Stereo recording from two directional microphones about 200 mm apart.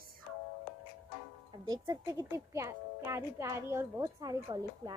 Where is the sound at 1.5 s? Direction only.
20° right (ahead or behind).